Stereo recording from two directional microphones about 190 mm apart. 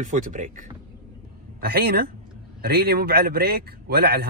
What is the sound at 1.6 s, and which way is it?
A man's voice, 55° right (ahead or behind).